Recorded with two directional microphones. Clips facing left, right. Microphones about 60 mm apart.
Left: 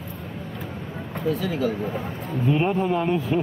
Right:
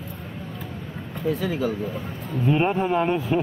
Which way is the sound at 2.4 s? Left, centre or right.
Centre.